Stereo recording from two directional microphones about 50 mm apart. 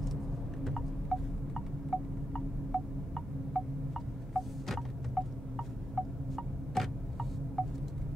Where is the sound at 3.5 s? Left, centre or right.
Centre.